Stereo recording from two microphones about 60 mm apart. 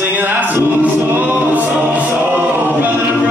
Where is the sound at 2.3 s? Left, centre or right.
Right.